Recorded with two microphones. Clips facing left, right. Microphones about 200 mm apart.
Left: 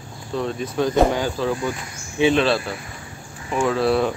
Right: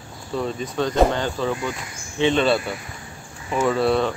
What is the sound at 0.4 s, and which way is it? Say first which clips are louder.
Speech: left 2 dB; 5° left (ahead or behind).